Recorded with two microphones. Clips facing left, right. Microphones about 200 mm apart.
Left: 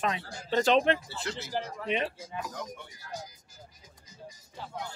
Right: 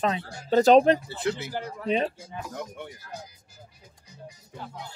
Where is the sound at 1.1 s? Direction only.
60° right (ahead or behind).